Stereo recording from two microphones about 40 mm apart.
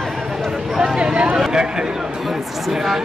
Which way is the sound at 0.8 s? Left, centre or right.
Right.